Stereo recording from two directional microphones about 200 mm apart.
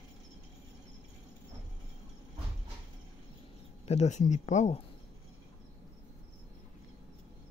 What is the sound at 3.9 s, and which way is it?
Speech, 35° left (ahead or behind).